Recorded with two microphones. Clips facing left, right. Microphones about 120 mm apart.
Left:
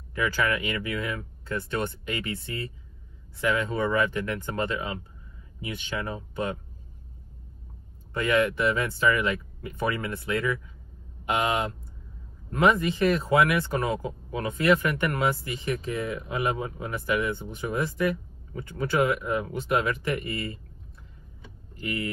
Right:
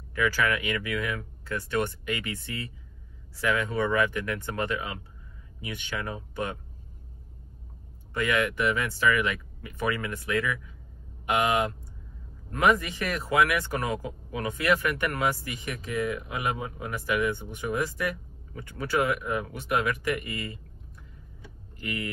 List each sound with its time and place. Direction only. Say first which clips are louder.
0.1 s speech: even; 30° left (ahead or behind)
8.2 s speech: left 3 dB; 35° left (ahead or behind)
12.4 s a man's voice: left 2 dB; 30° left (ahead or behind)
21.7 s speech: left 3 dB; 30° left (ahead or behind)